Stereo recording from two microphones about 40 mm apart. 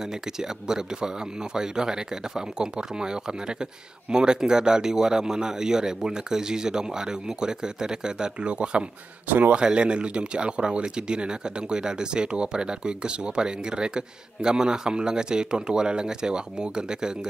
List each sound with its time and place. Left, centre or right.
0.0 s speech: centre
9.3 s speech: right
9.6 s speech: right